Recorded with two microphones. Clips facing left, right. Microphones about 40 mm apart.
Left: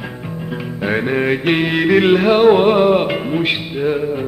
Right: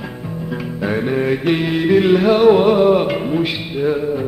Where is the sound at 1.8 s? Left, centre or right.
Left.